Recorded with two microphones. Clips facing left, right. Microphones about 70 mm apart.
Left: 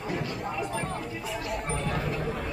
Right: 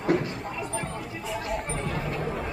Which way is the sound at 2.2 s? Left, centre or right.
Centre.